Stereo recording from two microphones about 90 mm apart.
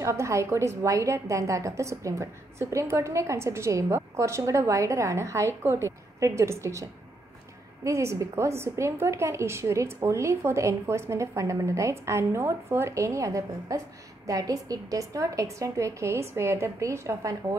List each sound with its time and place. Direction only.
0.0 s a woman's voice: 35° right (ahead or behind)